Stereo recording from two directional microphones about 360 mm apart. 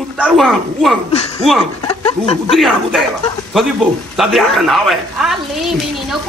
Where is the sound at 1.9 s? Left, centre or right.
Centre.